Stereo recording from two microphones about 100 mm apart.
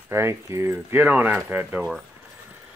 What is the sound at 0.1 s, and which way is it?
Speech, 25° right (ahead or behind).